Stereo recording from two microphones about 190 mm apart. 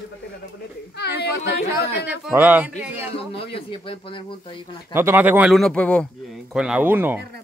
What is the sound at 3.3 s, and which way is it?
Speech, 30° left (ahead or behind).